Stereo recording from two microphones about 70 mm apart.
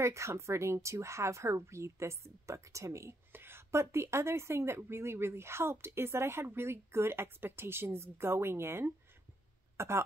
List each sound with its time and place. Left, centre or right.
0.0 s a woman's voice: right
3.3 s speech: right